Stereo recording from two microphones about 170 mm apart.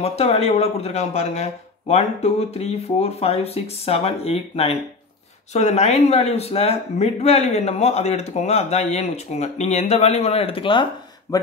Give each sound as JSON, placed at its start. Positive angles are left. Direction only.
{"t": 0.0, "sound": "speech", "side_deg": 40}